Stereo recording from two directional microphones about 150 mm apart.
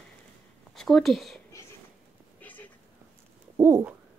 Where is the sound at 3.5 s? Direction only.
15° right (ahead or behind).